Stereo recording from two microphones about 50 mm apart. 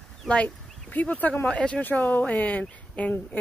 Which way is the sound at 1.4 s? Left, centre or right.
Left.